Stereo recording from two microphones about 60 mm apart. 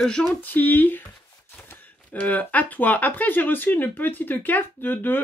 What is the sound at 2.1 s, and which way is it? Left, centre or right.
Speech, left.